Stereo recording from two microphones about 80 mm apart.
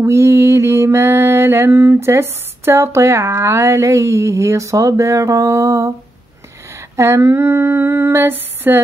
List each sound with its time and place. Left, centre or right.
0.0 s mantra: right
7.0 s mantra: right